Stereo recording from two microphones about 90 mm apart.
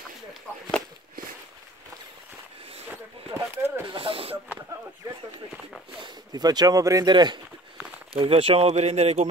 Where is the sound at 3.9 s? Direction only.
85° right.